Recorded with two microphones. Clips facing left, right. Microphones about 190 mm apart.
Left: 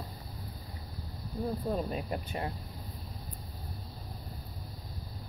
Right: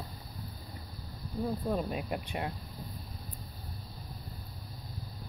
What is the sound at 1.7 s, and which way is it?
Speech, 5° right (ahead or behind).